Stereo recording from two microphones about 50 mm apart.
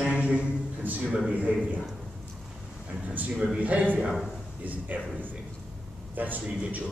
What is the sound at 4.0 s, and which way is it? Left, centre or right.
Speech, centre.